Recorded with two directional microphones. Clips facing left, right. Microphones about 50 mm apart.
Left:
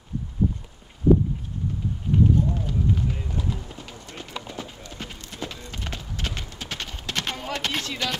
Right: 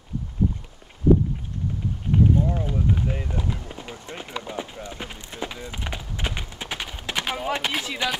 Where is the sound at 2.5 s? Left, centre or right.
Right.